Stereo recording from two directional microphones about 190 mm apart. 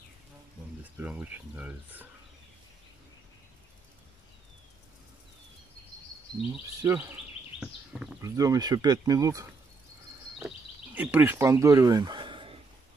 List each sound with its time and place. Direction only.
0.9 s speech: 10° right (ahead or behind)
6.8 s speech: 15° right (ahead or behind)
7.6 s a sound: 5° right (ahead or behind)
8.2 s speech: 20° right (ahead or behind)
11.0 s speech: 10° right (ahead or behind); by 12.5 s 25° right (ahead or behind)